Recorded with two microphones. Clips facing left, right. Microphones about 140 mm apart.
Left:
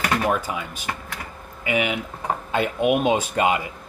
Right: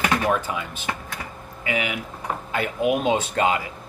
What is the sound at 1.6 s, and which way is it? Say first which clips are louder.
Speech: left 3 dB; 20° left (ahead or behind).